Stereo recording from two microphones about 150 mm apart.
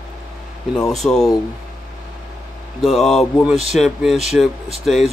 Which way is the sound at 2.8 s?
Centre (ahead or behind).